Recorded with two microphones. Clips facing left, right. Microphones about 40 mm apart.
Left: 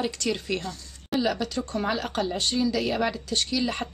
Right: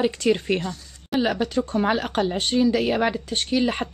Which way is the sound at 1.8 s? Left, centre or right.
Right.